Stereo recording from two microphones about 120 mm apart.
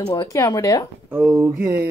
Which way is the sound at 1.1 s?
10° right (ahead or behind).